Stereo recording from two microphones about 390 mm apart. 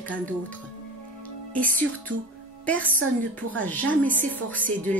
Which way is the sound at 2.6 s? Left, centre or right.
Centre.